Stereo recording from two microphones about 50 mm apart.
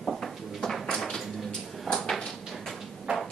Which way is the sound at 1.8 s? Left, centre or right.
Centre.